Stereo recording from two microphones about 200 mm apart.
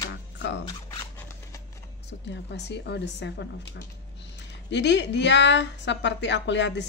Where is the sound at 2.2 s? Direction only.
60° left (ahead or behind).